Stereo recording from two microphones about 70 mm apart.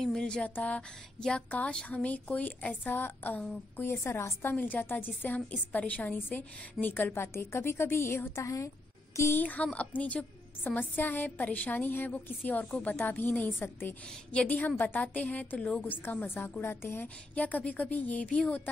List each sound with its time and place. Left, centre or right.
0.0 s a woman's voice: centre; by 8.5 s left
8.5 s a sound: left
9.3 s a woman's voice: left
14.3 s a woman's voice: centre
17.4 s a woman's voice: left